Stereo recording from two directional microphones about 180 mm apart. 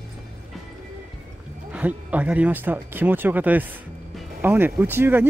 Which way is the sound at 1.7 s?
10° right (ahead or behind).